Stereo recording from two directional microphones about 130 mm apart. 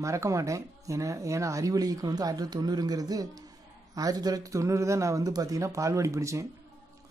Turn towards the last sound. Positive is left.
turn(degrees=-25)  # may be behind; listen again after turning